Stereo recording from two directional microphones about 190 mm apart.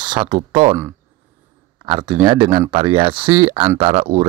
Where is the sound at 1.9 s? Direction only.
25° right (ahead or behind).